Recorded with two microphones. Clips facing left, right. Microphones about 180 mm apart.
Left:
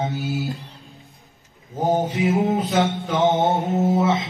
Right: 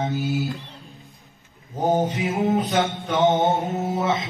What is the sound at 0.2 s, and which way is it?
Mantra, centre (ahead or behind).